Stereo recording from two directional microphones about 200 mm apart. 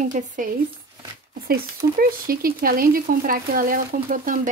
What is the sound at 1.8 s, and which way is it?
Speech, 45° right (ahead or behind).